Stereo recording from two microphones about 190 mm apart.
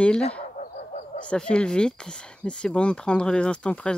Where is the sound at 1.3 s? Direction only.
5° left (ahead or behind).